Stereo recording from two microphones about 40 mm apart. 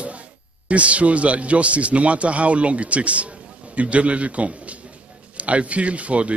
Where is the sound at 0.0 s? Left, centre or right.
Right.